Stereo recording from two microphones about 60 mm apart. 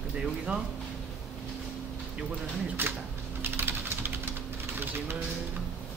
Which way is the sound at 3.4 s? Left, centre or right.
Right.